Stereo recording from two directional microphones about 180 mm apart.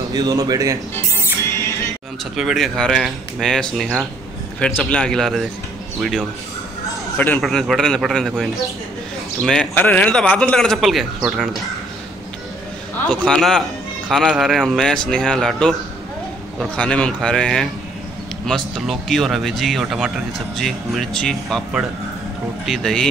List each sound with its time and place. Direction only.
0.1 s speech: 20° right (ahead or behind)
2.3 s speech: centre (ahead or behind)
7.2 s speech: 5° left (ahead or behind)
13.0 s speech: 5° left (ahead or behind)